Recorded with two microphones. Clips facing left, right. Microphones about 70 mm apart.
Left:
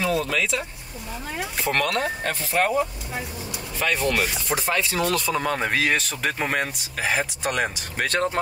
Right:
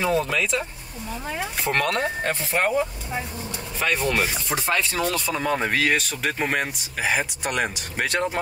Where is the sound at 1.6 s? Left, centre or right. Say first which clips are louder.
Even; right.